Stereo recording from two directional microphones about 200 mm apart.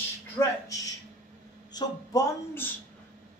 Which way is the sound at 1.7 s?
20° left (ahead or behind).